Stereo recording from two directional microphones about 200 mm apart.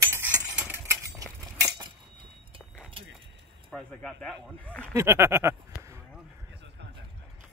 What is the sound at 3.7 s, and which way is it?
Speech, 5° left (ahead or behind).